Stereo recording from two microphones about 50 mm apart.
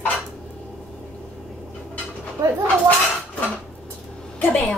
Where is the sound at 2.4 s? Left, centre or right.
Right.